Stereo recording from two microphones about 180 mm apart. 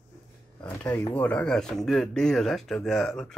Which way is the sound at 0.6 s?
10° left (ahead or behind).